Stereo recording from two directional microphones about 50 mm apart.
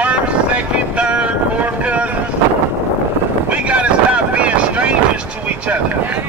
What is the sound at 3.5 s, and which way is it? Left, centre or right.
Boat, right.